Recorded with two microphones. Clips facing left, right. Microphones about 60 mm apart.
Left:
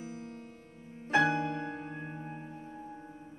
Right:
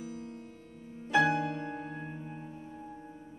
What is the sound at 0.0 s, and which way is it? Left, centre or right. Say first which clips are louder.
Music: right 1 dB; left.